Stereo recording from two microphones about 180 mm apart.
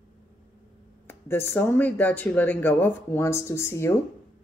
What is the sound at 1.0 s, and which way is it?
Speech, 10° left (ahead or behind).